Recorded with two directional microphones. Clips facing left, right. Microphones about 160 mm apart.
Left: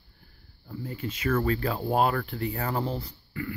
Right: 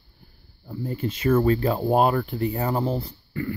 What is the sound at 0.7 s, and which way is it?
Speech, 35° right (ahead or behind).